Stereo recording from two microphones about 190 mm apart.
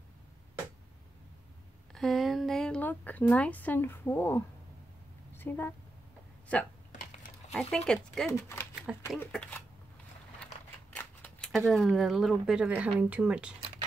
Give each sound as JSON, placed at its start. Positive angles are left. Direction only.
{"t": 2.0, "sound": "a woman's voice", "side_deg": 0}
{"t": 6.9, "sound": "typing", "side_deg": 40}
{"t": 7.5, "sound": "speech", "side_deg": 5}
{"t": 8.3, "sound": "speech", "side_deg": 15}
{"t": 8.9, "sound": "speech", "side_deg": -5}
{"t": 9.2, "sound": "speech", "side_deg": 10}
{"t": 11.0, "sound": "speech", "side_deg": 5}